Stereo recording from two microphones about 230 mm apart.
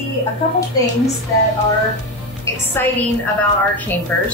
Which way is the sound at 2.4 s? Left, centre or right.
Centre.